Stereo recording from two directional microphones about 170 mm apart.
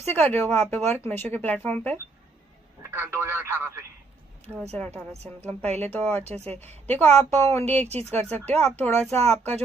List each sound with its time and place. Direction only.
0.1 s speech: 10° left (ahead or behind)
2.8 s speech: 15° right (ahead or behind)
4.7 s speech: 10° left (ahead or behind)
6.2 s speech: 40° right (ahead or behind)
6.9 s speech: 10° left (ahead or behind)
7.8 s speech: 40° right (ahead or behind)
8.5 s speech: 10° left (ahead or behind)